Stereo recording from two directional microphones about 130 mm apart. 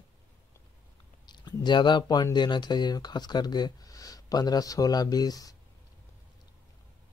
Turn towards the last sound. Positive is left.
turn(degrees=30)  # may be behind; listen again after turning